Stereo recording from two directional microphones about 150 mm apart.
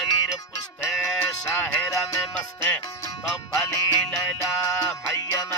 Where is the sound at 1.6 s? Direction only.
15° left (ahead or behind).